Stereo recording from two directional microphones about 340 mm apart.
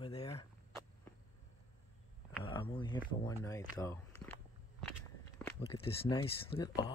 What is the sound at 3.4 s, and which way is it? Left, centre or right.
Speech, centre.